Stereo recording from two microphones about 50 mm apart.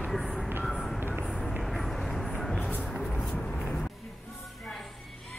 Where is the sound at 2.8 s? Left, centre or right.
Centre.